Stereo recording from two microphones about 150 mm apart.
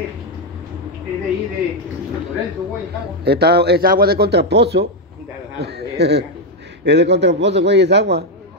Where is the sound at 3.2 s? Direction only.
90° right.